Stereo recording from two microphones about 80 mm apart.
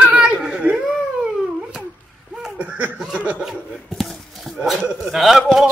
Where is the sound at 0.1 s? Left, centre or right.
Centre.